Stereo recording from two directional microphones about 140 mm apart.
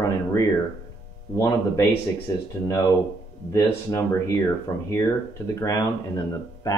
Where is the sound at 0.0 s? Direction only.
25° left (ahead or behind).